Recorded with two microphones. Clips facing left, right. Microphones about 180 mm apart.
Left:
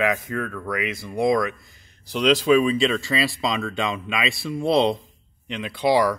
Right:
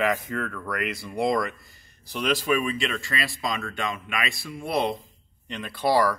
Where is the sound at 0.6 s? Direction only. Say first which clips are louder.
Left 3 dB; 15° left (ahead or behind).